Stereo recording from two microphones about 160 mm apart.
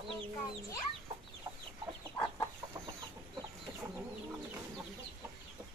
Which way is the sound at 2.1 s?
15° left (ahead or behind).